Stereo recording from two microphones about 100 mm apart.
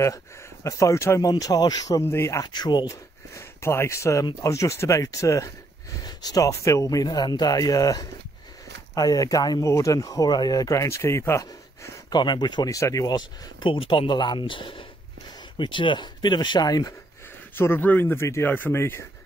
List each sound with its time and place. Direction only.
0.7 s speech: 30° left (ahead or behind)
1.3 s speech: 40° left (ahead or behind)
2.4 s speech: 45° left (ahead or behind)
2.9 s speech: 30° left (ahead or behind)
12.1 s speech: 45° left (ahead or behind)
12.6 s speech: 35° left (ahead or behind)
17.6 s speech: 20° left (ahead or behind)